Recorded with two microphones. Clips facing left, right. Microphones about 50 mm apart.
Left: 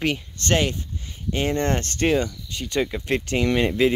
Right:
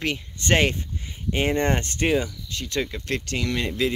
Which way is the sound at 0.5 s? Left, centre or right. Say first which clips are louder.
Right 1 dB; right.